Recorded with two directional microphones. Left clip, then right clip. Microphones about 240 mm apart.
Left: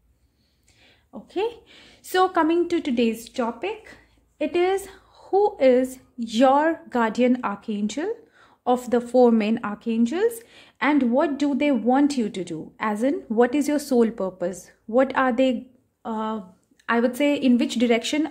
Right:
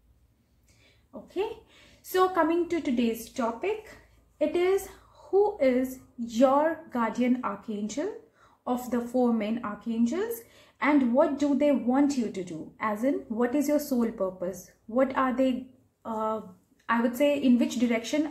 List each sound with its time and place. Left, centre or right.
1.3 s a woman's voice: left